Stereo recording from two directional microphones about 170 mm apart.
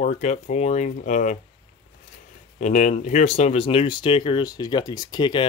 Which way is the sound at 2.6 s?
45° left (ahead or behind).